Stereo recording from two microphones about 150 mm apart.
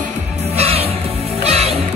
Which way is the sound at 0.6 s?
45° right (ahead or behind).